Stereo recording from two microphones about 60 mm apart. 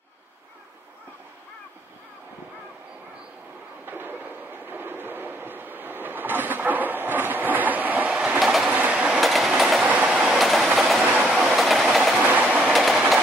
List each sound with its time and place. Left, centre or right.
3.8 s train: right
8.4 s train: centre
8.6 s train: right
9.2 s train: centre
9.8 s train: right
10.1 s train: centre
12.2 s train: right
12.7 s train: centre